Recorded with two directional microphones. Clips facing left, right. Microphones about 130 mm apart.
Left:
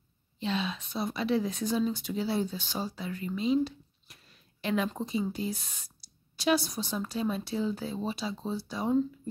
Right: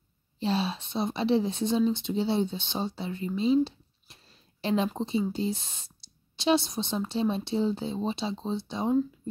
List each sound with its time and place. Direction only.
0.4 s speech: 35° right (ahead or behind)